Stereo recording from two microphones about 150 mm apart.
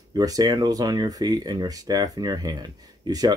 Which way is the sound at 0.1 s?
25° right (ahead or behind).